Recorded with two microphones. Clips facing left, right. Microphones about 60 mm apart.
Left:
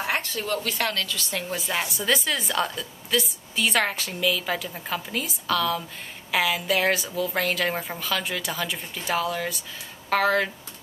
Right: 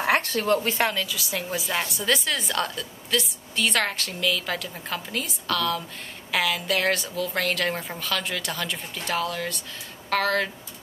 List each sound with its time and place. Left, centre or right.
0.0 s a sound: right
0.6 s a woman's voice: right
0.9 s a woman's voice: centre